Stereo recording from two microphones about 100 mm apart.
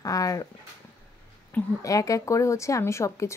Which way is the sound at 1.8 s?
35° left (ahead or behind).